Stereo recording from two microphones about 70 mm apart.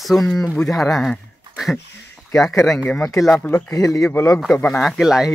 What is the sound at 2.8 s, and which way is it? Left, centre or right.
Speech, centre.